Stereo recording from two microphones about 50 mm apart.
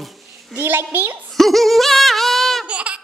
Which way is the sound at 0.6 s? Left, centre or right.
Right.